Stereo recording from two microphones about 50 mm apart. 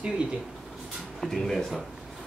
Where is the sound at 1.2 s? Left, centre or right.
Centre.